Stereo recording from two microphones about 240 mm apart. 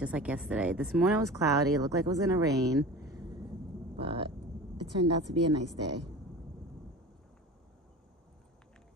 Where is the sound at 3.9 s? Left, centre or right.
Right.